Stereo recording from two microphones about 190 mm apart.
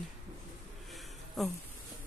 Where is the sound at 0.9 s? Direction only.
Centre (ahead or behind).